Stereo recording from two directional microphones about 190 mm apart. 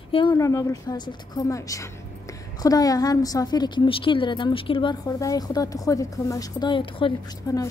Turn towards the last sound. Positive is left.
turn(degrees=20)  # may be behind; listen again after turning